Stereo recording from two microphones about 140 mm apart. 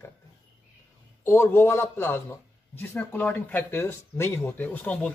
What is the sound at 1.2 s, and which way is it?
A man's voice, 15° left (ahead or behind).